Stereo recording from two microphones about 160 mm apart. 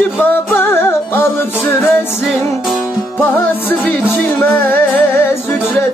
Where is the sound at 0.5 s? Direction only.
15° left (ahead or behind).